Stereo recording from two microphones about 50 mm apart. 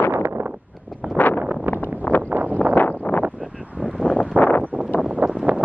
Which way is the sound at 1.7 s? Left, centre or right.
Right.